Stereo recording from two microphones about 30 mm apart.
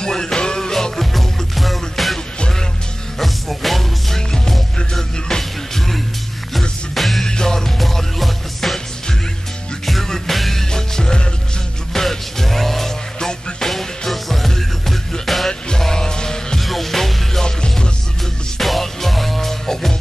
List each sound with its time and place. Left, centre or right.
0.0 s music: left; by 2.1 s centre
3.2 s music: centre
5.3 s music: centre
7.0 s music: centre
7.2 s music: left
7.8 s music: centre
10.0 s music: centre
13.2 s music: centre
13.7 s music: centre
15.8 s music: centre
16.5 s music: centre
17.5 s music: left
18.6 s music: centre